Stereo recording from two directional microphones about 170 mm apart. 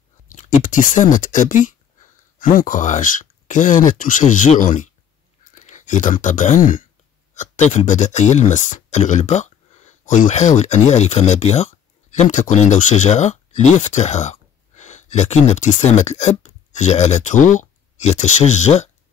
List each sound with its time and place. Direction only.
0.3 s speech: 50° left (ahead or behind)